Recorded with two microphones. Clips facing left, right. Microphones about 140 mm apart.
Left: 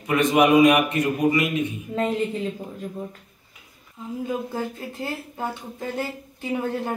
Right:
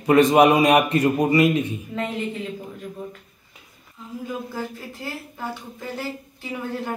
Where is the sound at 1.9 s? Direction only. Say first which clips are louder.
Left 6 dB; 35° left (ahead or behind).